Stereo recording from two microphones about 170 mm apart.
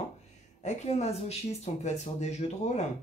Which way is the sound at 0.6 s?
40° left (ahead or behind).